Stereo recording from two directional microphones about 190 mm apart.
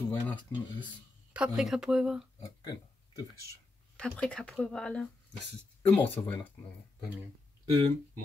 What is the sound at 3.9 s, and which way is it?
Speech, 5° left (ahead or behind).